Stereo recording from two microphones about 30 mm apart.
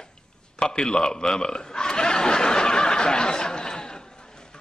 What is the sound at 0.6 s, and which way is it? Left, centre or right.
A man's voice, left.